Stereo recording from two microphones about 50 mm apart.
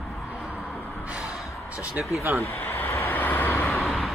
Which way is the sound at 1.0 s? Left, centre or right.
Right.